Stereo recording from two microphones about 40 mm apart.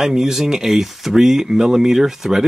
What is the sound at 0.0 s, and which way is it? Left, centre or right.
Speech, centre.